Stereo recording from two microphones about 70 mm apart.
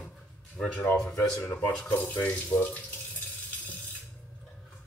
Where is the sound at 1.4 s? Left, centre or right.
Left.